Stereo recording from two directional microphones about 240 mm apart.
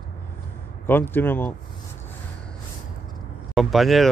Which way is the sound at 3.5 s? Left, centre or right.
Centre.